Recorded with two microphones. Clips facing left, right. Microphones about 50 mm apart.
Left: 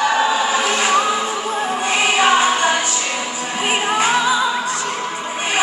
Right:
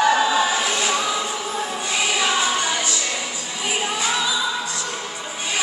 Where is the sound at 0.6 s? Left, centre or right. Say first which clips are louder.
Left 6 dB; left.